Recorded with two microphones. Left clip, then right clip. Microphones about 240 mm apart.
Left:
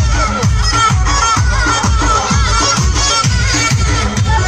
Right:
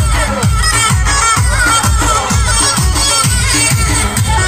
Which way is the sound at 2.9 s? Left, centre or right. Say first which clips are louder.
Right 1 dB; right.